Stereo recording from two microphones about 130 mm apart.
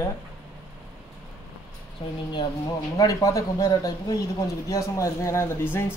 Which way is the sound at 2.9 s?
25° left (ahead or behind).